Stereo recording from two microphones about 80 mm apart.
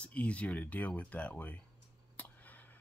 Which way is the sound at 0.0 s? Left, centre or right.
Centre.